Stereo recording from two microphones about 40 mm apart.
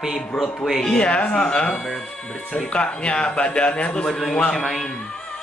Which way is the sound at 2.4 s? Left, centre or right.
Left.